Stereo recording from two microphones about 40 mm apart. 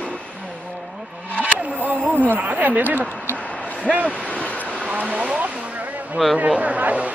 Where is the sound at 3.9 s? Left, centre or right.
Centre.